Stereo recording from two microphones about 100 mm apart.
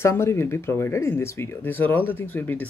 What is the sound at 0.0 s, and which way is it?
Speech, 25° left (ahead or behind).